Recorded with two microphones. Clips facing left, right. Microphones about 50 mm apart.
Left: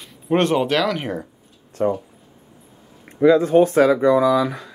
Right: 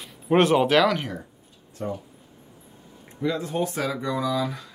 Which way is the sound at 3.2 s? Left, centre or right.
Left.